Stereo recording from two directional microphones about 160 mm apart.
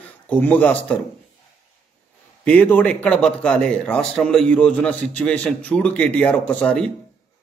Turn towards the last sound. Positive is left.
turn(degrees=5)  # may be behind; listen again after turning